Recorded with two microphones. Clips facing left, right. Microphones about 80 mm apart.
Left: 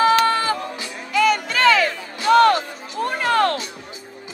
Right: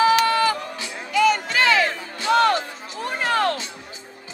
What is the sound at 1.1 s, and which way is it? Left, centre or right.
Music, left.